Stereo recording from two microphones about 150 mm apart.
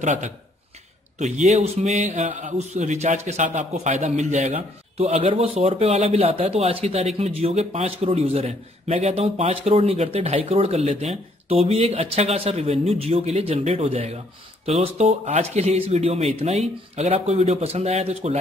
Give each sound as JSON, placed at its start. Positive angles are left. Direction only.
{"t": 0.0, "sound": "speech", "side_deg": -55}
{"t": 1.4, "sound": "a man's voice", "side_deg": -45}